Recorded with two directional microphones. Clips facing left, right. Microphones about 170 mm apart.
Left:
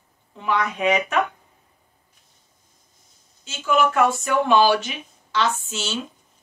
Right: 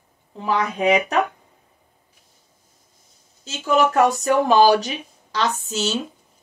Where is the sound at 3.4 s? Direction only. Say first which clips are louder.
Right 2 dB; 40° right (ahead or behind).